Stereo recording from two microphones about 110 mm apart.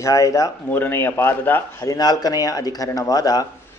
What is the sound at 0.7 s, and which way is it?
Speech, 20° left (ahead or behind).